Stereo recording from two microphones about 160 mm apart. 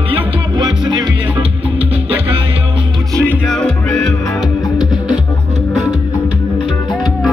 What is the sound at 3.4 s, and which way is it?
Music, 5° left (ahead or behind).